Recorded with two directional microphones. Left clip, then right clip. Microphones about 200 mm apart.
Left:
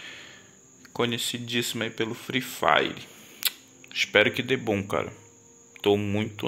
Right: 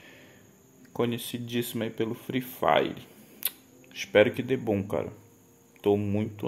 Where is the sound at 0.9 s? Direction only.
15° right (ahead or behind).